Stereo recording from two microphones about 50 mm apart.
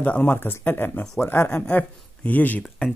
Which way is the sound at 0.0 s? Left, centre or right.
Left.